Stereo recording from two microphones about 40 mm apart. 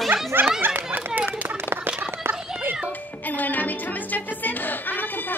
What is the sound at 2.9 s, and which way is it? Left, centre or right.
Music, left.